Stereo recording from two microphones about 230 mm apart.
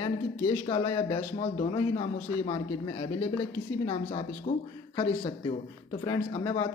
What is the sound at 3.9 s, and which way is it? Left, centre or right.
Speech, left.